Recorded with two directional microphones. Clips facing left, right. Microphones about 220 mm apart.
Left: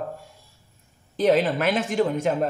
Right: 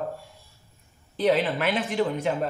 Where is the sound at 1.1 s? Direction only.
40° left (ahead or behind).